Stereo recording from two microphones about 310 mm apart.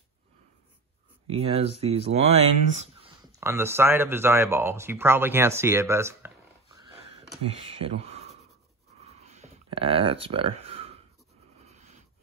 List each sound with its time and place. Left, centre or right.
1.2 s speech: centre
3.3 s speech: centre
7.5 s speech: centre
9.0 s a sound: right